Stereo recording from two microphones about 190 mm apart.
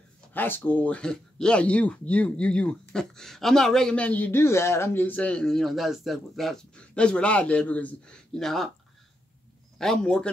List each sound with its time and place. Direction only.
0.3 s speech: 10° left (ahead or behind)
9.8 s speech: 5° left (ahead or behind)